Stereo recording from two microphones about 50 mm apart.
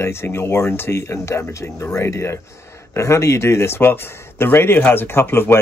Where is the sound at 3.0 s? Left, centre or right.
Left.